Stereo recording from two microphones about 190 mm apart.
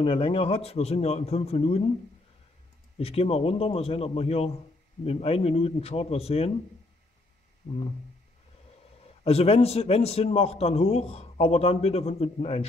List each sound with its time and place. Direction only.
0.0 s a man's voice: 30° left (ahead or behind)
3.0 s a man's voice: 30° left (ahead or behind)
9.2 s a man's voice: 30° left (ahead or behind)